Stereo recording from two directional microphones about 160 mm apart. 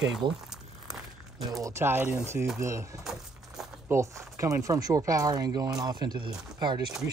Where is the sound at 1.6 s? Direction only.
15° right (ahead or behind).